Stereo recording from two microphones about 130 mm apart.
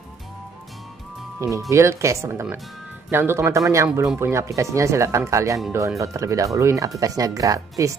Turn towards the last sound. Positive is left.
turn(degrees=-25)  # may be behind; listen again after turning